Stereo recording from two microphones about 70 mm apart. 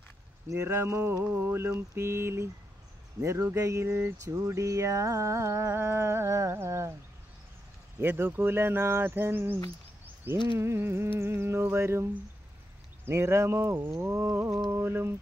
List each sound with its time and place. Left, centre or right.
0.7 s speech: right
1.1 s mantra: right
2.0 s speech: right
3.2 s music: right
4.2 s music: right
8.0 s speech: right